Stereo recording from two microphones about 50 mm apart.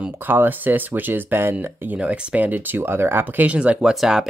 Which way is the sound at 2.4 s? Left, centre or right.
Right.